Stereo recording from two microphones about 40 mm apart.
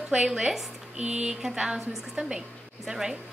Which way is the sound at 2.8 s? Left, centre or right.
Centre.